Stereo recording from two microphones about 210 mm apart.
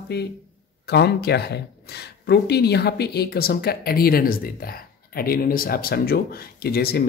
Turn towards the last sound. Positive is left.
turn(degrees=50)  # may be behind; listen again after turning